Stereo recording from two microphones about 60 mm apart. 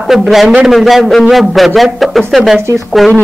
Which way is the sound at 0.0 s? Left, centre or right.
Centre.